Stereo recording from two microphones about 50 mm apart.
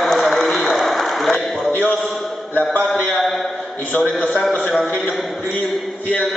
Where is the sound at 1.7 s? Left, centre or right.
Left.